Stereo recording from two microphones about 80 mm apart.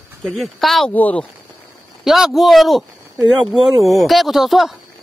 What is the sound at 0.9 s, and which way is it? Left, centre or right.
Speech, left.